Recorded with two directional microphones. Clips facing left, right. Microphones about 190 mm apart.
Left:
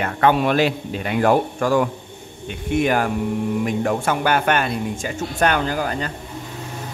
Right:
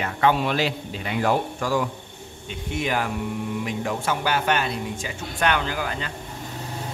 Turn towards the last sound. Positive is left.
turn(degrees=45)  # may be behind; listen again after turning